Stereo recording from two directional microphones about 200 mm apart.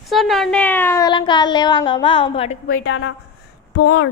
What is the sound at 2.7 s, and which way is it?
Speech, 90° left.